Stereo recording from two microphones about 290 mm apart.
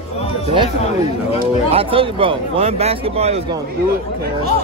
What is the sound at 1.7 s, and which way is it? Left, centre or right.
A man's voice, centre.